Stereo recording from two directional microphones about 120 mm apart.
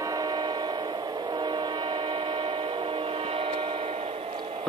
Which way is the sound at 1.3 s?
40° right (ahead or behind).